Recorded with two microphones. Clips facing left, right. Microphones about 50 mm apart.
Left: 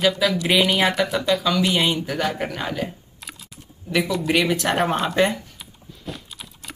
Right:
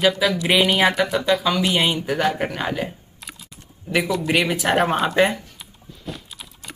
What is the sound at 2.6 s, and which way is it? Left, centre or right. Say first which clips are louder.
Speech: right 2 dB; right.